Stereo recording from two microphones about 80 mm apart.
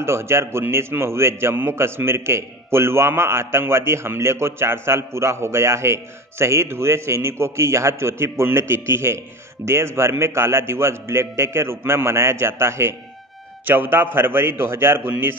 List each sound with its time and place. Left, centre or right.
0.0 s a man's voice: right